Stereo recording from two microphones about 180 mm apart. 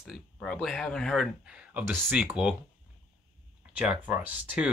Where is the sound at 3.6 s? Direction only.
5° right (ahead or behind).